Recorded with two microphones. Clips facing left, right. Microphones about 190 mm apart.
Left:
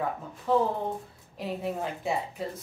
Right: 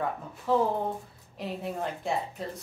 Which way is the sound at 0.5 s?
Centre (ahead or behind).